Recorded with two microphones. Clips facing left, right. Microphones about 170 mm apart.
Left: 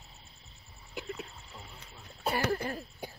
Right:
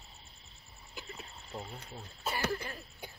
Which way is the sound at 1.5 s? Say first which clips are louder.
Right 9 dB; 45° right (ahead or behind).